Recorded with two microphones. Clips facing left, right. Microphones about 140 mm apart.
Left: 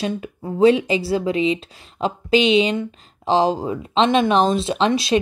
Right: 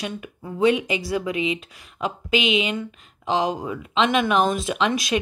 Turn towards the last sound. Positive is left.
turn(degrees=30)  # may be behind; listen again after turning